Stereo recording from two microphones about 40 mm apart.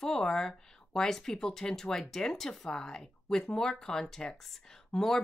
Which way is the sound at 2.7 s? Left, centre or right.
Centre.